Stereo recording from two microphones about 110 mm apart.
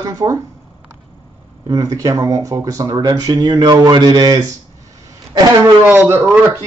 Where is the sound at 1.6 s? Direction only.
30° right (ahead or behind).